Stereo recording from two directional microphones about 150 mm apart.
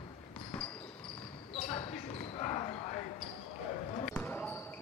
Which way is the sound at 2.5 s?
35° left (ahead or behind).